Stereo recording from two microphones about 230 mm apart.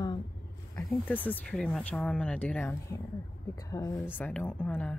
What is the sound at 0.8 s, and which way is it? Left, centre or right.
Speech, centre.